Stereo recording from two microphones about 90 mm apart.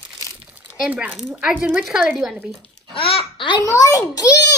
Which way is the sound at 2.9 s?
85° left.